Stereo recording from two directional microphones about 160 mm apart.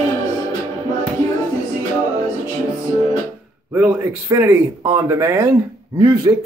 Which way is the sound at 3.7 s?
15° right (ahead or behind).